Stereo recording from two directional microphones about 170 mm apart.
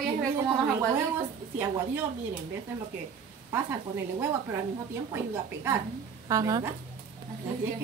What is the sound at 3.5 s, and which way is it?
Speech, 15° right (ahead or behind).